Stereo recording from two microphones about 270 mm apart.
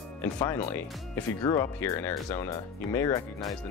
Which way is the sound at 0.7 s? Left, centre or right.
Centre.